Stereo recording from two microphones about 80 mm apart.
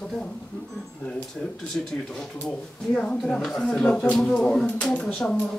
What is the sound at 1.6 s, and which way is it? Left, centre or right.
Speech, centre.